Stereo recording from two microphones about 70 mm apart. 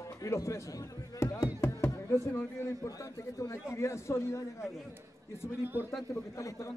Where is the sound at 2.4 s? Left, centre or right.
Left.